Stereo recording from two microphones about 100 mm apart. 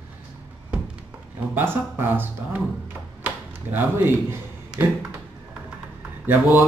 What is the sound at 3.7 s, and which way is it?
Speech, 25° right (ahead or behind).